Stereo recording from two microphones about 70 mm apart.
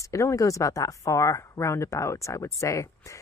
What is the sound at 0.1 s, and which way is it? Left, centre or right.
Speech, left.